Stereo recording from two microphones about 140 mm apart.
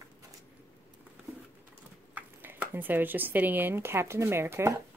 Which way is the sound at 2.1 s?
10° right (ahead or behind).